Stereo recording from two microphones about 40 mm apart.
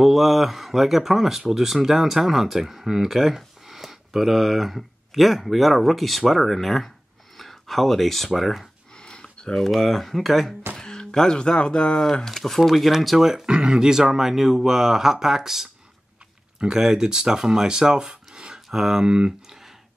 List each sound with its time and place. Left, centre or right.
0.0 s speech: centre
8.9 s a sound: left
9.7 s speech: centre
10.8 s speech: centre
12.0 s speech: centre
13.3 s speech: centre